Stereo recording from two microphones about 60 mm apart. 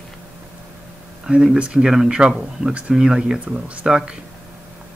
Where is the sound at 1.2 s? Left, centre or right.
Centre.